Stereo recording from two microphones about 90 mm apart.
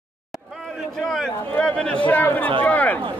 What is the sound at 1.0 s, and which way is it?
Chatter, 5° left (ahead or behind).